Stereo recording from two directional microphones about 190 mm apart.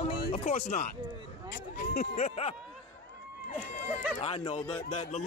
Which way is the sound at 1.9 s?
35° left (ahead or behind).